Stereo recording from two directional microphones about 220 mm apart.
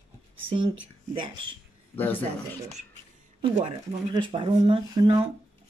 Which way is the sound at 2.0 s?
10° left (ahead or behind).